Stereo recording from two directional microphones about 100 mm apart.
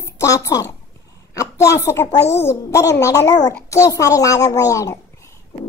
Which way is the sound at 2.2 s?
25° left (ahead or behind).